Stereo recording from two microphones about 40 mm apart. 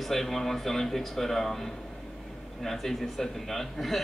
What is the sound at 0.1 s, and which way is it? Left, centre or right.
Speech, centre.